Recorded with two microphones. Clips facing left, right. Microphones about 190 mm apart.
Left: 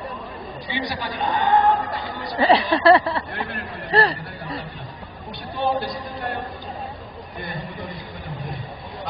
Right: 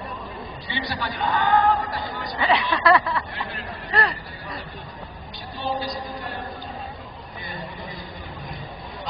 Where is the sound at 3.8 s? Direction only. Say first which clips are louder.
Left 5 dB; 30° left (ahead or behind).